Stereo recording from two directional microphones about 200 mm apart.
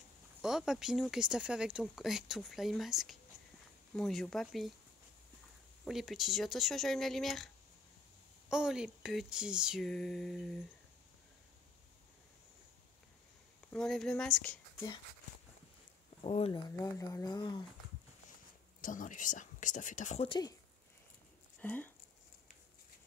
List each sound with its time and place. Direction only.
0.4 s speech: centre (ahead or behind)
5.9 s speech: centre (ahead or behind)
8.5 s speech: 5° right (ahead or behind)
13.7 s speech: 5° left (ahead or behind)
16.2 s speech: 30° left (ahead or behind)
16.6 s speech: 15° left (ahead or behind)
18.8 s speech: 40° left (ahead or behind)
20.2 s speech: 20° left (ahead or behind)
21.5 s speech: 10° left (ahead or behind)